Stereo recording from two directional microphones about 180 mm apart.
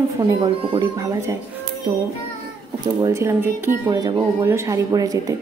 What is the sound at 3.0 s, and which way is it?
A woman's voice, 15° right (ahead or behind).